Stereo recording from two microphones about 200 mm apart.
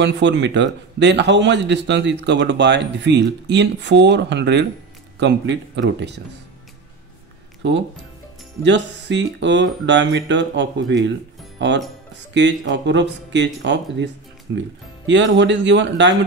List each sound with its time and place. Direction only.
0.0 s a man's voice: 60° right (ahead or behind)
8.6 s a man's voice: 60° right (ahead or behind)